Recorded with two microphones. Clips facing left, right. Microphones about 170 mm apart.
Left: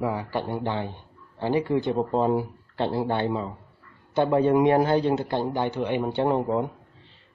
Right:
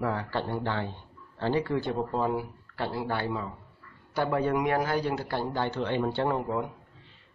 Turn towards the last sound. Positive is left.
turn(degrees=20)  # may be behind; listen again after turning